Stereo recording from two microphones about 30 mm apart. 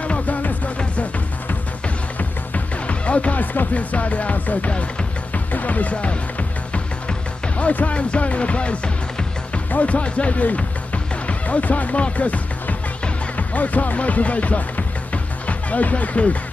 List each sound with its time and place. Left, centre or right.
0.0 s music: left
2.9 s music: left
6.7 s music: left
13.4 s speech: left